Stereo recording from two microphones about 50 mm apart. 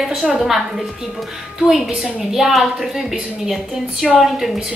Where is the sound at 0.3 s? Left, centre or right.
Centre.